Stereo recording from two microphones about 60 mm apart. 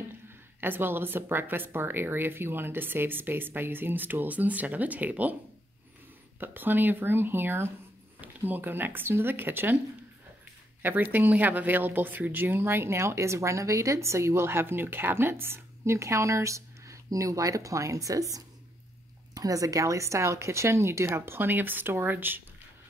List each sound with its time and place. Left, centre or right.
0.6 s speech: right
6.4 s speech: right
10.8 s speech: right